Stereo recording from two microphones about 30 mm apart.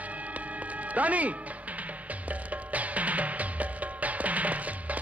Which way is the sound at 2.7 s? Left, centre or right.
Right.